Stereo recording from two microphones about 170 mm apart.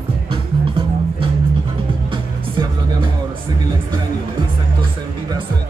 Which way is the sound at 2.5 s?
30° right (ahead or behind).